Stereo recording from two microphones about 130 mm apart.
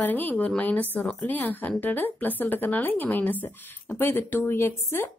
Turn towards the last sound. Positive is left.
turn(degrees=20)  # may be behind; listen again after turning